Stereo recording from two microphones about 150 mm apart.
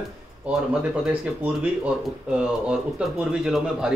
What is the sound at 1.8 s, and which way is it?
Speech, 5° right (ahead or behind).